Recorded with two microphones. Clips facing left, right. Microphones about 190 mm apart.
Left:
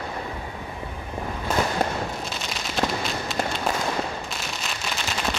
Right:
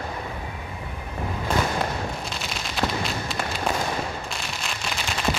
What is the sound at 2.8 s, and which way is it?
Fireworks, 45° left (ahead or behind).